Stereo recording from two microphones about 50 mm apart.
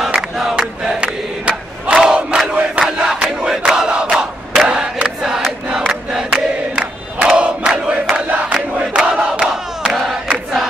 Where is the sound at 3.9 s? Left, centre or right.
Centre.